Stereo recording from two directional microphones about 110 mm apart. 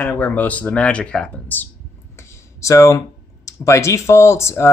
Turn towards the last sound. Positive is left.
turn(degrees=25)  # may be behind; listen again after turning